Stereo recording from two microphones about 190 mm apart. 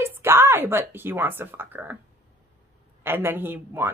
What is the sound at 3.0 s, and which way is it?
Speech, 10° right (ahead or behind).